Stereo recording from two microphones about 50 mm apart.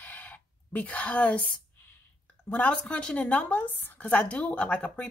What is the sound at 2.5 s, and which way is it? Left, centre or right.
Speech, left.